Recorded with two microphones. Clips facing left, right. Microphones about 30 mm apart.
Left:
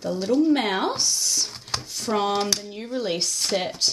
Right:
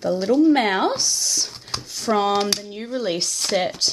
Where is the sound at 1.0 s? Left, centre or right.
Centre.